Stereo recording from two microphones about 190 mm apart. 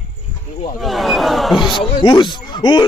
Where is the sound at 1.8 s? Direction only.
25° left (ahead or behind).